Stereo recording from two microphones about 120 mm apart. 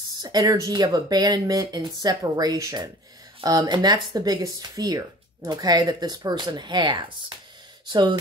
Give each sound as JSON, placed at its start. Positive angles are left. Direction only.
{"t": 0.2, "sound": "speech", "side_deg": -30}